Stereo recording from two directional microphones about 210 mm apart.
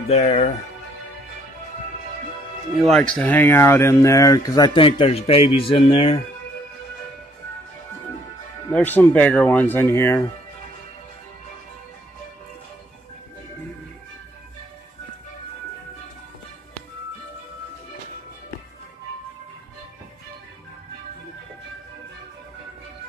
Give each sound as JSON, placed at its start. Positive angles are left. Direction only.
{"t": 0.1, "sound": "speech", "side_deg": 25}
{"t": 2.8, "sound": "speech", "side_deg": 5}
{"t": 8.7, "sound": "speech", "side_deg": 10}